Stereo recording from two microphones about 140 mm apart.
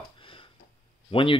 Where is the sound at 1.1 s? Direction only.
40° left (ahead or behind).